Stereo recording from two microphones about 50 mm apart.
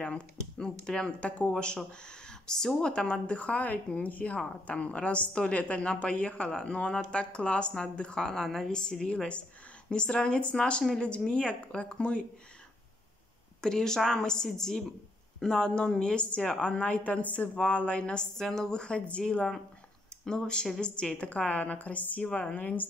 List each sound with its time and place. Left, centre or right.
0.0 s a woman's voice: left
13.6 s a woman's voice: centre
18.4 s a woman's voice: centre; by 22.8 s left